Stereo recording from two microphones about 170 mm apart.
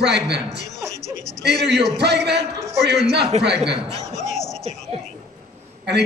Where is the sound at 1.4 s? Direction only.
80° right.